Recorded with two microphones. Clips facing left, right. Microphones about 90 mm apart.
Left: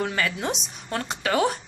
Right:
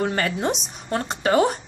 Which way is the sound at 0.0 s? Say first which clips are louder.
Right 3 dB; 40° right (ahead or behind).